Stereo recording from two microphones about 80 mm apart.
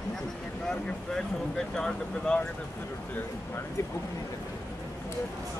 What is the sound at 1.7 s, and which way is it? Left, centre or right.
Speech, centre.